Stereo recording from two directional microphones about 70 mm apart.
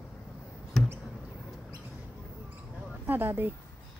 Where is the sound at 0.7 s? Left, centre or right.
Centre.